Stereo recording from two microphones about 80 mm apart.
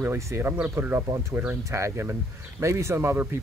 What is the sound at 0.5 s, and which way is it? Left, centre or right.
Speech, right.